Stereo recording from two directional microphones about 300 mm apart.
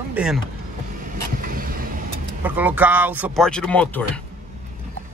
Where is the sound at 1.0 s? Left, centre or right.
Right.